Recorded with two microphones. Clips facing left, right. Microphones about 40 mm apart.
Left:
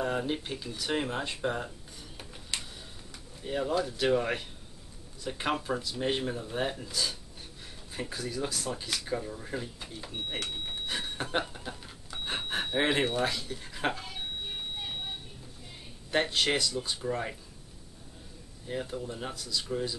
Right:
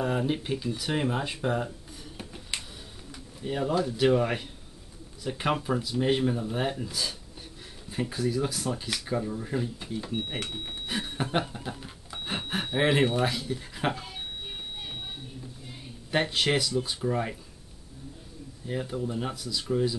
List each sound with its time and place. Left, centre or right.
0.0 s speech: centre
2.5 s a sound: centre
3.1 s speech: centre
10.9 s a sound: centre
16.1 s speech: centre
18.7 s speech: centre